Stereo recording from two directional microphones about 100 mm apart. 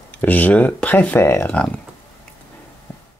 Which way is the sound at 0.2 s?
15° left (ahead or behind).